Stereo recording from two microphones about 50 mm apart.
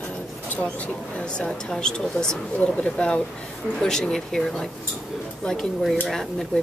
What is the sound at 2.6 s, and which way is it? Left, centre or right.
Speech, left.